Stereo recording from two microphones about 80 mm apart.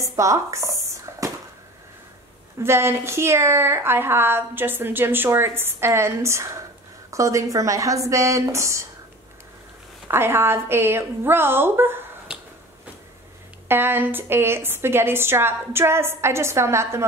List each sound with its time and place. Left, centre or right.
0.0 s speech: right
1.2 s a sound: right
2.6 s a woman's voice: right
10.0 s a woman's voice: right
13.7 s a woman's voice: right